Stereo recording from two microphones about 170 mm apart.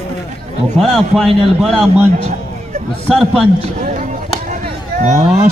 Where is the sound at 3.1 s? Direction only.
Centre (ahead or behind).